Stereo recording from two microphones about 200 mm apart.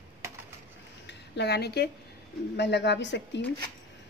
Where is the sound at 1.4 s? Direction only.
55° left (ahead or behind).